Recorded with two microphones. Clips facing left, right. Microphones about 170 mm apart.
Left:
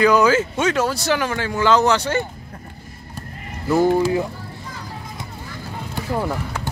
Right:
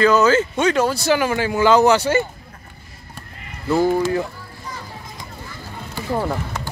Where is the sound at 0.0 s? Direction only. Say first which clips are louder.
Even; 10° left (ahead or behind); by 2.2 s 5° right (ahead or behind).